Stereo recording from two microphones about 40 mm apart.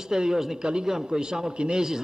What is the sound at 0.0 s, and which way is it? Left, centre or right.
A man's voice, centre.